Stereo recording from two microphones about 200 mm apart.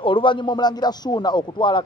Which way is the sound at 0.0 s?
25° left (ahead or behind).